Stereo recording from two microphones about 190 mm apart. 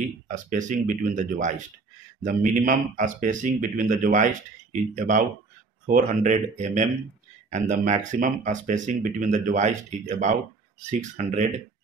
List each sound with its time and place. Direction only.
0.3 s speech: 40° right (ahead or behind)
2.2 s speech: 40° right (ahead or behind)